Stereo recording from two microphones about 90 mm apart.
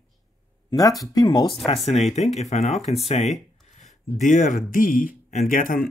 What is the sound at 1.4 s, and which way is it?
Speech, 80° left.